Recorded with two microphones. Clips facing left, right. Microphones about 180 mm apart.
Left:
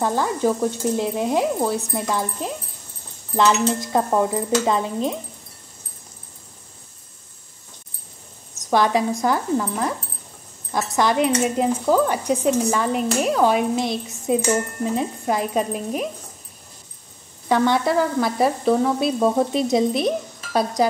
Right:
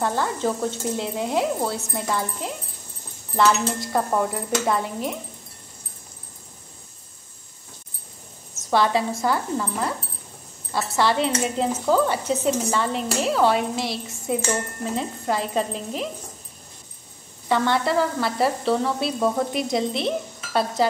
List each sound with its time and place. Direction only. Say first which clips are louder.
0.0 s speech: left 3 dB; 10° left (ahead or behind)
8.5 s speech: left 2 dB; 15° left (ahead or behind)
17.5 s speech: left 3 dB; 15° left (ahead or behind)